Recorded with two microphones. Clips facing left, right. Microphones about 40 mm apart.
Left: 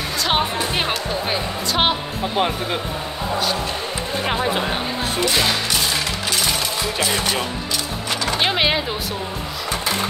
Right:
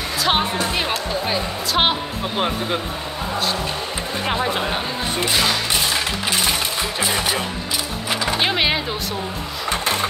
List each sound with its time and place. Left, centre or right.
0.2 s music: centre
0.8 s speech: centre
4.2 s speech: centre
6.3 s music: right
8.4 s speech: centre